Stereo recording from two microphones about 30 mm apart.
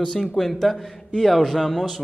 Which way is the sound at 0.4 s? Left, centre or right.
Centre.